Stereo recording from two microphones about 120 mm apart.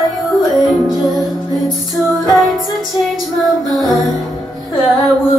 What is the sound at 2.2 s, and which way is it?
Music, centre (ahead or behind).